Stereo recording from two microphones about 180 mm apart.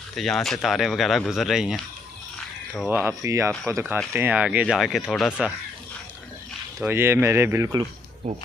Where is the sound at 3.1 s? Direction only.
15° right (ahead or behind); by 5.5 s centre (ahead or behind).